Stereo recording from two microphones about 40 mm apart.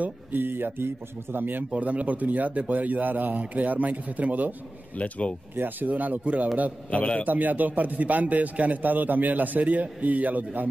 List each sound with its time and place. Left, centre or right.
0.0 s a man's voice: right
1.7 s a man's voice: right
4.9 s speech: left
5.6 s a man's voice: right
6.9 s speech: left
7.2 s a man's voice: right